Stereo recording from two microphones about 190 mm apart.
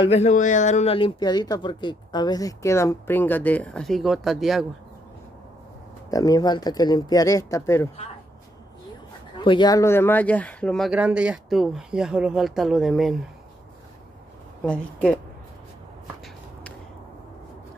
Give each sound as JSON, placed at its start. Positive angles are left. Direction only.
{"t": 0.1, "sound": "speech", "side_deg": 35}
{"t": 6.0, "sound": "speech", "side_deg": 20}
{"t": 9.4, "sound": "speech", "side_deg": 25}
{"t": 14.6, "sound": "speech", "side_deg": 5}